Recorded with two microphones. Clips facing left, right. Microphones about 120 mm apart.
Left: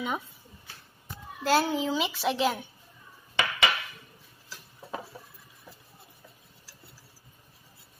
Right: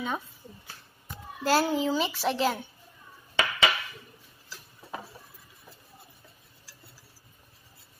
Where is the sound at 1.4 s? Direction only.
Centre (ahead or behind).